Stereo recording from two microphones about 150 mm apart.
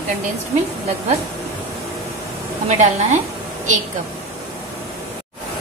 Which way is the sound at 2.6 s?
55° right (ahead or behind).